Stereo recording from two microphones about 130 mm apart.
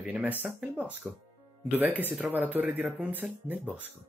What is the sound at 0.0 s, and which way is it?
Speech, 15° right (ahead or behind).